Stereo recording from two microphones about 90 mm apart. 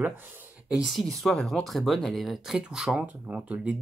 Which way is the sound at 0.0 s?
20° right (ahead or behind).